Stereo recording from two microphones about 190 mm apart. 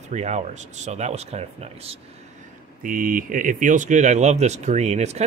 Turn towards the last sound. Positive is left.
turn(degrees=-35)  # may be behind; listen again after turning